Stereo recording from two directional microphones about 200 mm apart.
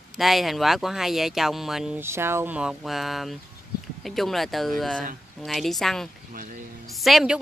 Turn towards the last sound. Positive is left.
turn(degrees=0)  # may be behind; listen again after turning